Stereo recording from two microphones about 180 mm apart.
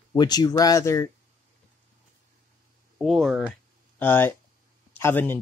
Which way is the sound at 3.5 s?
10° left (ahead or behind).